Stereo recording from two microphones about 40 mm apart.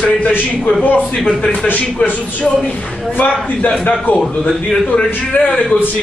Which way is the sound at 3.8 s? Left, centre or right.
Left.